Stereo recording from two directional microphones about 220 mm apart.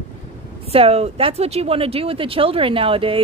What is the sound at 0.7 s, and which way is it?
Speech, 25° right (ahead or behind).